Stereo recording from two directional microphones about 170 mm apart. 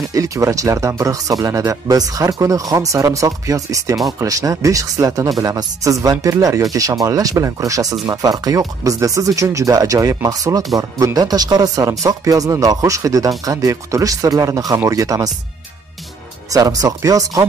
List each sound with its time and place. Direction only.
0.1 s speech: 20° right (ahead or behind)
16.4 s speech: 20° right (ahead or behind)